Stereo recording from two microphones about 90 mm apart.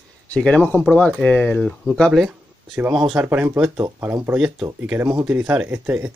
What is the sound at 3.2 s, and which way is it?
Speech, 25° right (ahead or behind).